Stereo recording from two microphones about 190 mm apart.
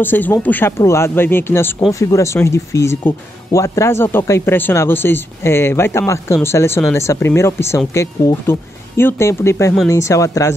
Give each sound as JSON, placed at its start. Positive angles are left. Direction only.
{"t": 0.0, "sound": "speech", "side_deg": 10}